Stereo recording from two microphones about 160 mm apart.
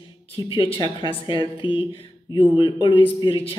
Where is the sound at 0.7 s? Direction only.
30° left (ahead or behind).